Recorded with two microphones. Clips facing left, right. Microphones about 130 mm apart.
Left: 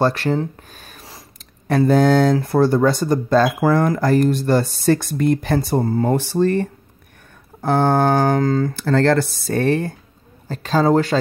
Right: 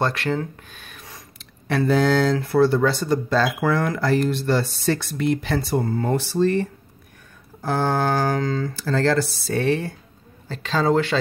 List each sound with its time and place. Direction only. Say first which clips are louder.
0.0 s speech: left 5 dB; 35° left (ahead or behind)
1.7 s speech: left 4 dB; 45° left (ahead or behind)
5.8 s speech: left 3 dB; 35° left (ahead or behind)